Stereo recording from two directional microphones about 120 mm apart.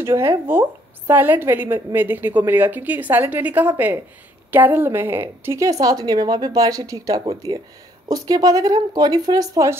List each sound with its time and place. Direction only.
0.0 s a woman's voice: 25° right (ahead or behind)